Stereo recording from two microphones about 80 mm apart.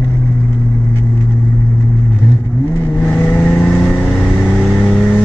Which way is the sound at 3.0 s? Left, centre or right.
Centre.